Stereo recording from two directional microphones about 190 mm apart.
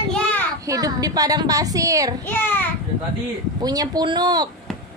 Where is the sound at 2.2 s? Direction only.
10° left (ahead or behind).